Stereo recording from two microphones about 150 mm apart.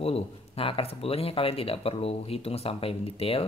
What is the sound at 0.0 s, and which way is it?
Speech, 40° left (ahead or behind).